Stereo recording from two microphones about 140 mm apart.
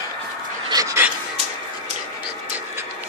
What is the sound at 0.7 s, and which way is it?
Dog, 25° right (ahead or behind).